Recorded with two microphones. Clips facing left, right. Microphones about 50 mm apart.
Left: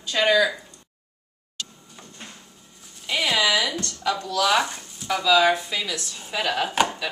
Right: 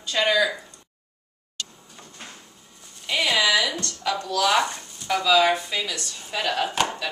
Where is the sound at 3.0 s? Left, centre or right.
Centre.